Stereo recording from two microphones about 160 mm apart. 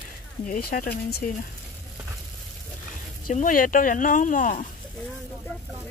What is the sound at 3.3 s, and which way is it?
Speech, 55° left (ahead or behind).